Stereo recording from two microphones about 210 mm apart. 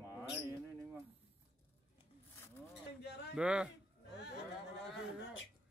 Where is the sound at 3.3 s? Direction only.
5° right (ahead or behind).